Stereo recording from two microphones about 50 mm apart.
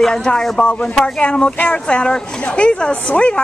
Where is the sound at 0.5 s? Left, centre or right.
Centre.